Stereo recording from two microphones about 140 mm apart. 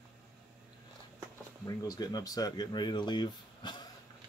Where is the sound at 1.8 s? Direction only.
25° left (ahead or behind).